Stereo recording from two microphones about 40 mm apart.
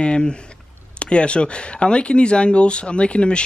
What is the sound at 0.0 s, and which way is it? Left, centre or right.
Speech, left.